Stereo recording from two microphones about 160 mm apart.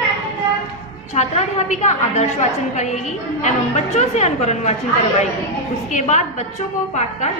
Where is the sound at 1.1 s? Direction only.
45° left (ahead or behind).